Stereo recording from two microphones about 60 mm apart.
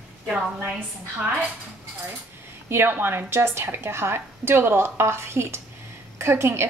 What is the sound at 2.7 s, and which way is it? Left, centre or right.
A woman's voice, right.